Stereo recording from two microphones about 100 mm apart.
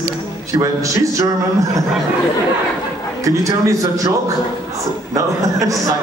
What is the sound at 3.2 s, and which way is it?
Speech, 35° right (ahead or behind).